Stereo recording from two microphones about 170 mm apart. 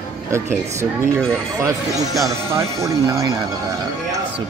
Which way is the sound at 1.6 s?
20° right (ahead or behind).